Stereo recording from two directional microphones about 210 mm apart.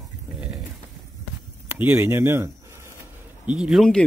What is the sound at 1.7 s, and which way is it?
Speech, 10° right (ahead or behind).